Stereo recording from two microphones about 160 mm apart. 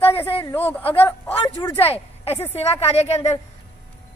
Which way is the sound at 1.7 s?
40° left (ahead or behind).